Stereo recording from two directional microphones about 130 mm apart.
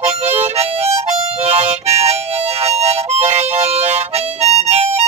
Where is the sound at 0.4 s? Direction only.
50° right (ahead or behind).